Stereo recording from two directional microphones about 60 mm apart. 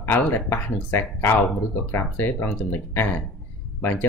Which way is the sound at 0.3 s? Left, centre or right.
Left.